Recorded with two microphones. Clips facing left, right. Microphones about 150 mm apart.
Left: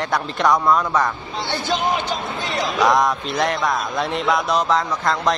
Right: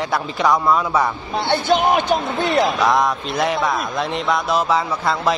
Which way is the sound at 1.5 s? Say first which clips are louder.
Right 5 dB; 60° right (ahead or behind).